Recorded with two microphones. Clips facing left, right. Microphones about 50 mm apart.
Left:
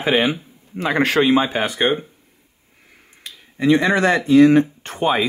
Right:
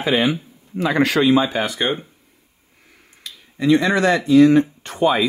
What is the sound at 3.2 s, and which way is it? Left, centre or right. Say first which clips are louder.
Speech: left 1 dB; left.